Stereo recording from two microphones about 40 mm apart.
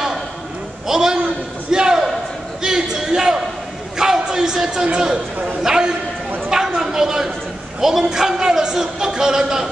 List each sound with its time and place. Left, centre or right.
0.8 s a man's voice: centre
1.7 s a sound: centre
4.0 s music: centre
4.9 s a man's voice: centre
6.5 s a sound: centre
7.8 s a man's voice: centre